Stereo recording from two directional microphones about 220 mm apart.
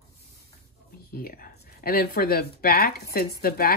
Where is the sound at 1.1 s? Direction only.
40° left (ahead or behind).